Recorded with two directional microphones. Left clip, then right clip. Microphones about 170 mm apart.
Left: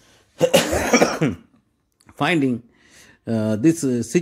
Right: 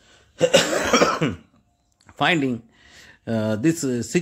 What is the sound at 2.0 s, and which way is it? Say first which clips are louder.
Speech: even; 20° left (ahead or behind).